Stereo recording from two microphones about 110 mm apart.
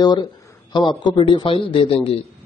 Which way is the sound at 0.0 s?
40° left (ahead or behind).